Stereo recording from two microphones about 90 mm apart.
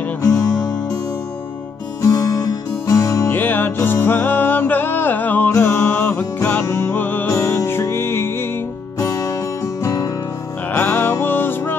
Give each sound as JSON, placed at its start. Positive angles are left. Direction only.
{"t": 0.2, "sound": "music", "side_deg": 35}
{"t": 2.0, "sound": "music", "side_deg": 40}
{"t": 3.3, "sound": "music", "side_deg": 20}
{"t": 9.0, "sound": "music", "side_deg": 40}
{"t": 10.7, "sound": "music", "side_deg": 25}